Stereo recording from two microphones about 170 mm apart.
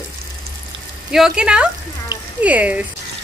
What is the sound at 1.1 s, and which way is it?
Speech, 5° right (ahead or behind).